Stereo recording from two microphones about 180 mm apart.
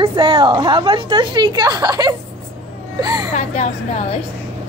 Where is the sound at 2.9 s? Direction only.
20° right (ahead or behind).